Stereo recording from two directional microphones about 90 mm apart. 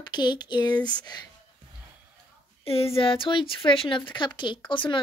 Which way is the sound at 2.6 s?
90° left.